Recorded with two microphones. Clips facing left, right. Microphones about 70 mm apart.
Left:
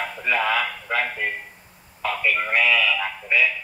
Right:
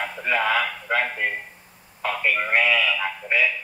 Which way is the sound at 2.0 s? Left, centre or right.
Centre.